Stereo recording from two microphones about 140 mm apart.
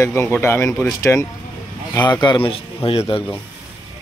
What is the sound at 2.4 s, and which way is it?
Speech, 40° left (ahead or behind).